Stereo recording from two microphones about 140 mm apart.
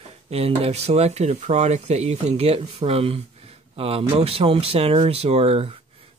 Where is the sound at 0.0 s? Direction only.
45° right (ahead or behind).